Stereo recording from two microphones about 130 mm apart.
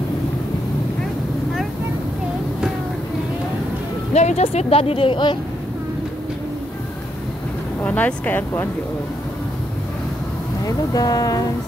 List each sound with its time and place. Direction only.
4.1 s speech: 60° left (ahead or behind); by 5.4 s 40° left (ahead or behind)
7.8 s speech: 15° left (ahead or behind)
10.6 s speech: 30° left (ahead or behind)